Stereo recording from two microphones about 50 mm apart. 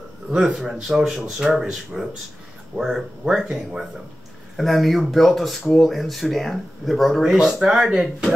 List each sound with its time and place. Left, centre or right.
0.3 s speech: right
0.8 s speech: centre
4.6 s speech: centre